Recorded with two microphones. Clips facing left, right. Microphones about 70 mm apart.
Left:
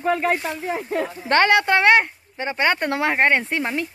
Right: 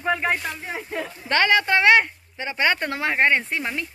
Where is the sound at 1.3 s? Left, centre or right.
Left.